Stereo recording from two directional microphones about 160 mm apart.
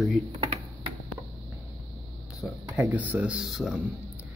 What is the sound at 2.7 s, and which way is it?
Speech, 10° right (ahead or behind).